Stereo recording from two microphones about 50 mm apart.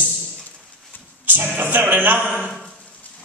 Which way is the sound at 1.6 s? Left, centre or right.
Right.